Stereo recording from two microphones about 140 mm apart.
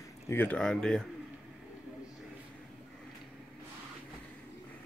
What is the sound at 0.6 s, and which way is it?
Speech, 5° left (ahead or behind).